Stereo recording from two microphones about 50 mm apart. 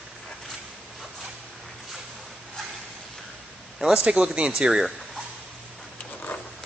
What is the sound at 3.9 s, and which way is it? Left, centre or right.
Speech, right.